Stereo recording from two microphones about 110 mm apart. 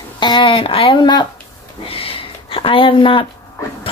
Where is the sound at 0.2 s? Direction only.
45° left (ahead or behind).